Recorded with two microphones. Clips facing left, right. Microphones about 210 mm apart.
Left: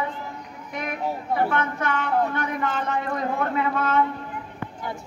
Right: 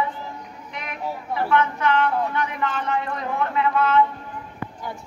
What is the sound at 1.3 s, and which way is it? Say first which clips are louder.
Speech: right 4 dB; 50° left (ahead or behind).